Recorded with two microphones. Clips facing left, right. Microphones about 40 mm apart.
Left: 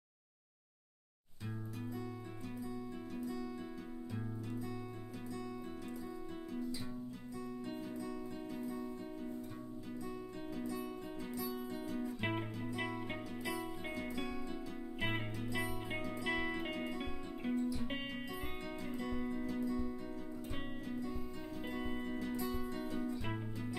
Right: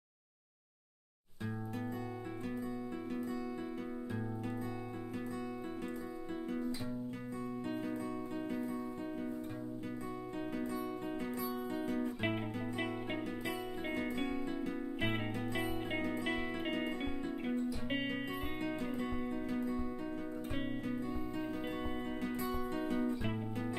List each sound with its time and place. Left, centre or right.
6.5 s music: right
10.5 s music: right
13.5 s music: right
16.3 s music: right
18.9 s music: right
21.9 s music: right